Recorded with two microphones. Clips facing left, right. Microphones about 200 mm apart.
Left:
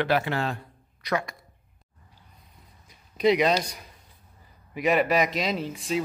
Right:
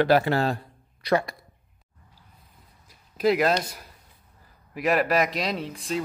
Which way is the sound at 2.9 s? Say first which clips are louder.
Left 1 dB; 5° right (ahead or behind).